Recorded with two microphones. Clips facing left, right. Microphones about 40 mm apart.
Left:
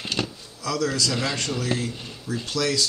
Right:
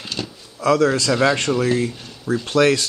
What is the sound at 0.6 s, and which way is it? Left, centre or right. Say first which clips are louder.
Speech: right 9 dB; right.